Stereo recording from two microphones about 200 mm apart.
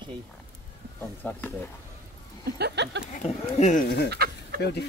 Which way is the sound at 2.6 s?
55° right (ahead or behind).